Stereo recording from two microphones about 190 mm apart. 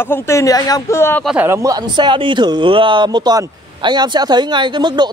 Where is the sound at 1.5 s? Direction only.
15° right (ahead or behind).